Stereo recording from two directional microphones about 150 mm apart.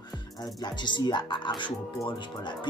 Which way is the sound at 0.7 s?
30° left (ahead or behind).